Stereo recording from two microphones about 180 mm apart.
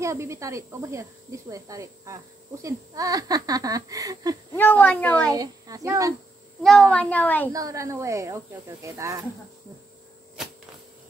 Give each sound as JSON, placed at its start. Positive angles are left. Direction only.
{"t": 0.0, "sound": "speech", "side_deg": -15}
{"t": 4.6, "sound": "speech", "side_deg": 10}
{"t": 5.3, "sound": "speech", "side_deg": -20}
{"t": 6.9, "sound": "speech", "side_deg": 5}
{"t": 7.4, "sound": "speech", "side_deg": -20}